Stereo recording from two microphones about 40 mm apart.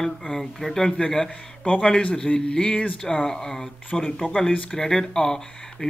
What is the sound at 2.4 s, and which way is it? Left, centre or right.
Speech, centre.